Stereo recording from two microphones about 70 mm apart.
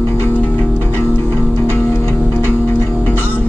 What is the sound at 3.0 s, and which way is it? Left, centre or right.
Music, left.